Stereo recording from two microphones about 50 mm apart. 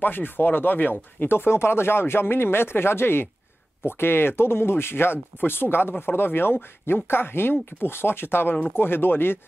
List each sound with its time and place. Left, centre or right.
0.0 s speech: left